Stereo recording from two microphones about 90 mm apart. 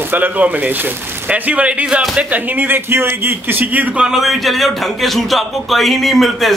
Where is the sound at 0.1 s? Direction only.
20° right (ahead or behind).